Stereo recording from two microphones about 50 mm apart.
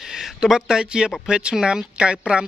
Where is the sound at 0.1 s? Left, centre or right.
Centre.